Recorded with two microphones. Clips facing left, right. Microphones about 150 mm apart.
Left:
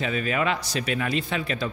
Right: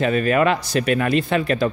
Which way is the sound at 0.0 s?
55° right (ahead or behind).